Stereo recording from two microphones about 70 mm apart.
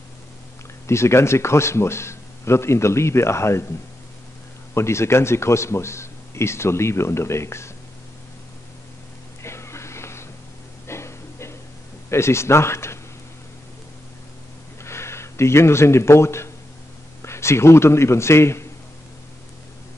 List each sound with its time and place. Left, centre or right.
0.8 s a man's voice: left
4.7 s a man's voice: left
9.4 s a sound: left
12.1 s a man's voice: left
14.8 s a man's voice: left